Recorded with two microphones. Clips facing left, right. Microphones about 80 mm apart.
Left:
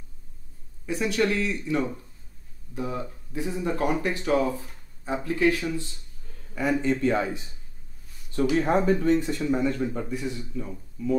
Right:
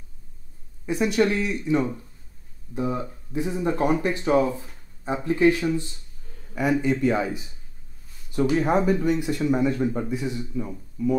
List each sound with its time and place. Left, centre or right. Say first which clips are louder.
0.8 s speech: right 3 dB; right